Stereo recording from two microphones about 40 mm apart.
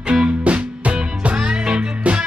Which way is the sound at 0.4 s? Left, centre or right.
Right.